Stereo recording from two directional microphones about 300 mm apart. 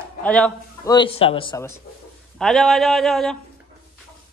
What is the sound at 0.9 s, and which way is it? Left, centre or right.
Speech, centre.